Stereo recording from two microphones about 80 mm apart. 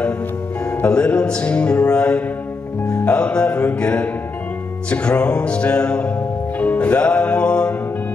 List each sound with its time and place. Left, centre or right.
0.7 s music: centre